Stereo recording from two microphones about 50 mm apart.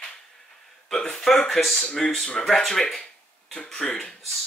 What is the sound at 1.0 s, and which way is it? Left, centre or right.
Speech, centre.